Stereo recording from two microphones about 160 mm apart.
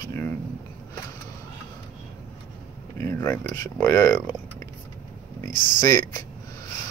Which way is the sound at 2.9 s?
15° left (ahead or behind).